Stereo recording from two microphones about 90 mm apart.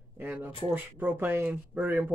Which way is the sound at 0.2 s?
25° right (ahead or behind).